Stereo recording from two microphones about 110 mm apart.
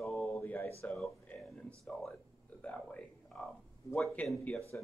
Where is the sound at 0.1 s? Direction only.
15° left (ahead or behind).